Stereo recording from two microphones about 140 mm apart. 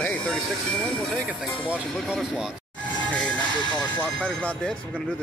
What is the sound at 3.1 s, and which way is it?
Speech, 10° left (ahead or behind).